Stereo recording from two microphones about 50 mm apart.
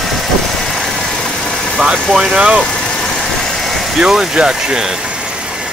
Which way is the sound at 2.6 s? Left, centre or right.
Centre.